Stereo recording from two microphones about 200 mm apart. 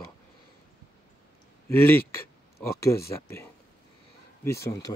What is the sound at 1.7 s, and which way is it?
Speech, 10° left (ahead or behind).